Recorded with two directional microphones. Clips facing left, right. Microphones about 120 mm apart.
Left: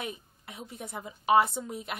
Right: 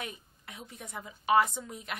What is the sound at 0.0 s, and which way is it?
A woman's voice, 25° left (ahead or behind).